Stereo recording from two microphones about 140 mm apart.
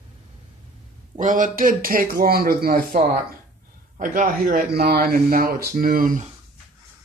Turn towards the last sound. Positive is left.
turn(degrees=-80)